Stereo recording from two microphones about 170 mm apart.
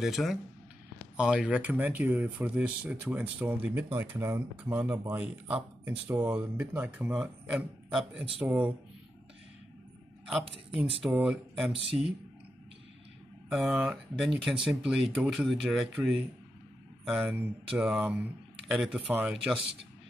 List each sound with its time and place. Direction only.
0.0 s speech: centre (ahead or behind)
11.0 s speech: 5° right (ahead or behind)
11.7 s speech: 35° right (ahead or behind)
13.5 s speech: 5° right (ahead or behind)